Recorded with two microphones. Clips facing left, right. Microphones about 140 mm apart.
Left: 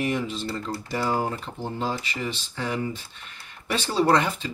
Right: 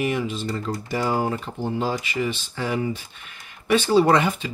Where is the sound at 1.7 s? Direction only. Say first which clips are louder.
Right 3 dB; 10° right (ahead or behind).